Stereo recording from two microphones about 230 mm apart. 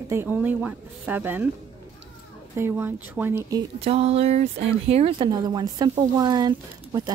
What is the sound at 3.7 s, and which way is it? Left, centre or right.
Speech, right.